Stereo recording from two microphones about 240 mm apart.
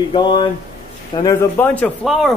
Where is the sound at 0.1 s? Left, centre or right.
Centre.